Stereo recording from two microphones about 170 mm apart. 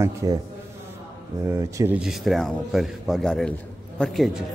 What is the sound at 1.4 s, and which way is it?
Speech, 15° right (ahead or behind).